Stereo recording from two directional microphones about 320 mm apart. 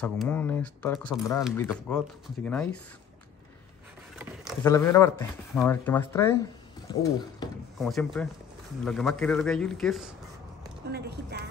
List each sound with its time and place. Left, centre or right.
0.0 s speech: centre
4.6 s speech: centre
7.8 s speech: centre
10.9 s speech: right